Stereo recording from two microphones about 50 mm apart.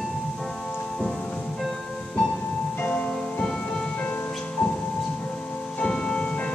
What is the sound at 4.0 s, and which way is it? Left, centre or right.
Music, left.